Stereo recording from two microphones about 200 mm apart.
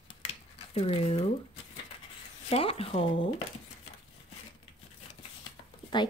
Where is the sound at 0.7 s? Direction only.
30° left (ahead or behind).